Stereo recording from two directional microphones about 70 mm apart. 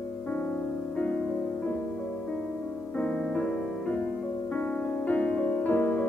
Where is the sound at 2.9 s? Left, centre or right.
Centre.